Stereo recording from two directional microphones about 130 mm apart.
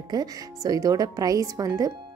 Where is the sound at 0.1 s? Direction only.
30° right (ahead or behind).